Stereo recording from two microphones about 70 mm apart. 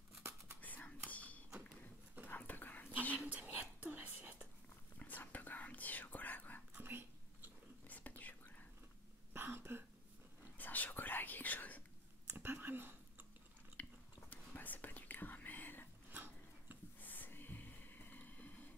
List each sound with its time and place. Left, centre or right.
0.6 s whispering: left
1.1 s a sound: left
3.2 s whispering: right
4.9 s whispering: left
6.8 s whispering: right
7.8 s whispering: left
9.3 s a sound: right
10.6 s whispering: left
12.3 s a sound: right
13.8 s biting: centre
14.3 s whispering: left
16.1 s dog: right
17.0 s snort: left